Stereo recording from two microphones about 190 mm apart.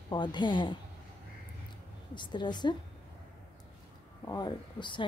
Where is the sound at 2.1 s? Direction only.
25° left (ahead or behind).